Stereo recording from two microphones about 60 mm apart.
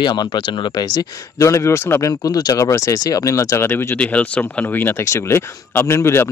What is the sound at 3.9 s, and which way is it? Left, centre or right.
Speech, left.